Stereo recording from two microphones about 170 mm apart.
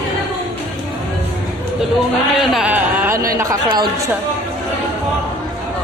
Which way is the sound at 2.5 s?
10° right (ahead or behind).